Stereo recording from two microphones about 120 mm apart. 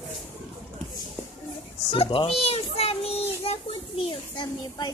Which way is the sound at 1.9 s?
45° left (ahead or behind).